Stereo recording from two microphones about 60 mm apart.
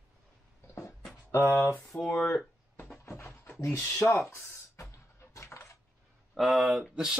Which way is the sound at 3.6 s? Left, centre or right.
Left.